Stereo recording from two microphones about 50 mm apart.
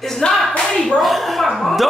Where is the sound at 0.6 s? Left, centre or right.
Centre.